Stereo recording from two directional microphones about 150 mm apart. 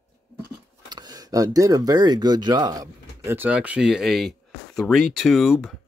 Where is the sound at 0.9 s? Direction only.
25° right (ahead or behind).